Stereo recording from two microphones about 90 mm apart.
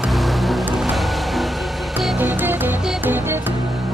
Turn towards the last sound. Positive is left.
turn(degrees=-20)  # may be behind; listen again after turning